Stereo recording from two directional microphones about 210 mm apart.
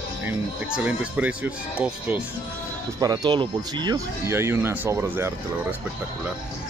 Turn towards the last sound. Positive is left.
turn(degrees=-10)  # may be behind; listen again after turning